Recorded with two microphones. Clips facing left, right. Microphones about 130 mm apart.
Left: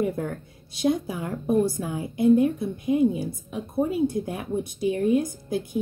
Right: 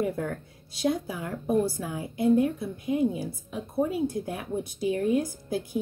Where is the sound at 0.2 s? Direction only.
20° left (ahead or behind).